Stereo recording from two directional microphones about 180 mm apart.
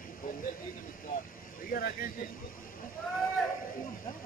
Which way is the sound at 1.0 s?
50° left (ahead or behind).